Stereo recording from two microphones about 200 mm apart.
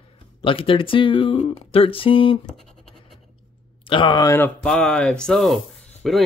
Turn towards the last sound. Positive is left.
turn(degrees=0)  # may be behind; listen again after turning